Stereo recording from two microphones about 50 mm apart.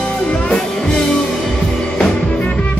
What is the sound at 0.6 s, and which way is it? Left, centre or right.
Music, centre.